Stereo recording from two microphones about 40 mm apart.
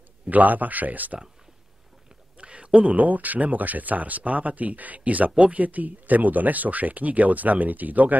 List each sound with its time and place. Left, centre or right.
0.3 s speech: right
2.3 s speech: right